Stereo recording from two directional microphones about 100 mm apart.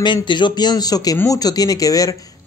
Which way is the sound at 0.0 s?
50° left (ahead or behind).